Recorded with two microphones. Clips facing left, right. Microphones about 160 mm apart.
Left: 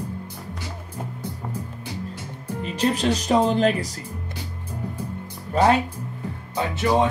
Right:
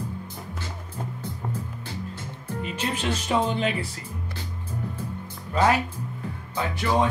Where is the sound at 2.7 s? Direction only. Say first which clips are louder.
Left 8 dB; 35° left (ahead or behind).